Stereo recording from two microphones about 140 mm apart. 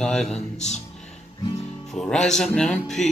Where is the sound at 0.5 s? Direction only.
55° left (ahead or behind).